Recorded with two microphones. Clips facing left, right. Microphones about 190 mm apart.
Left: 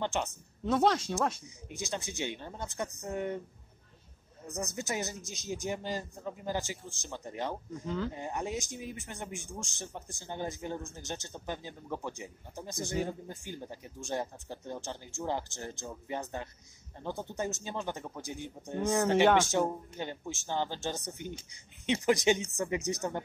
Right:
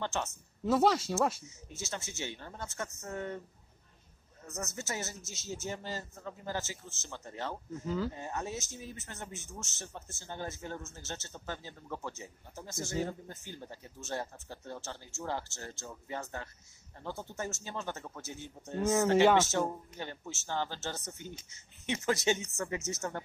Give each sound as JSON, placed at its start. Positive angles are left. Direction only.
{"t": 0.0, "sound": "speech", "side_deg": 15}
{"t": 0.7, "sound": "speech", "side_deg": -5}
{"t": 1.7, "sound": "speech", "side_deg": 15}
{"t": 4.5, "sound": "speech", "side_deg": 15}
{"t": 7.8, "sound": "speech", "side_deg": -5}
{"t": 8.1, "sound": "speech", "side_deg": 15}